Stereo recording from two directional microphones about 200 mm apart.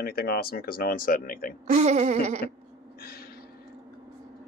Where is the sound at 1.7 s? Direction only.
35° right (ahead or behind).